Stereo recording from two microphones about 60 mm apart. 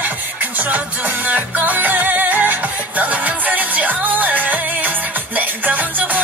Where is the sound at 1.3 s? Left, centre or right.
Right.